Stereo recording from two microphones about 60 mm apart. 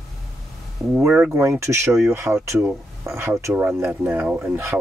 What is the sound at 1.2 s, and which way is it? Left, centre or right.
Speech, right.